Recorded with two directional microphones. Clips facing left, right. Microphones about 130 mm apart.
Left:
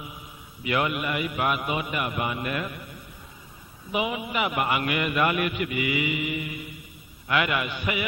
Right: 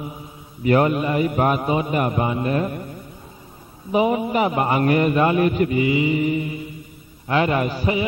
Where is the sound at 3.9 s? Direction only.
40° right (ahead or behind).